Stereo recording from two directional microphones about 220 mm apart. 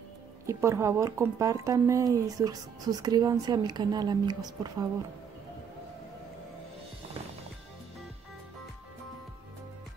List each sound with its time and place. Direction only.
0.5 s speech: 15° right (ahead or behind)